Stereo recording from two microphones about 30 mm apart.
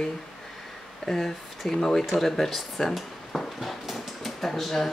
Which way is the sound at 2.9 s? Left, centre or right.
Centre.